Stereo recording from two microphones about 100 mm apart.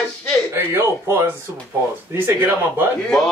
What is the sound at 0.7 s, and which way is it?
Speech, 25° right (ahead or behind).